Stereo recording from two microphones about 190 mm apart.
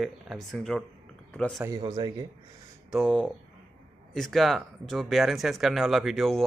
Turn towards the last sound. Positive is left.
turn(degrees=0)  # may be behind; listen again after turning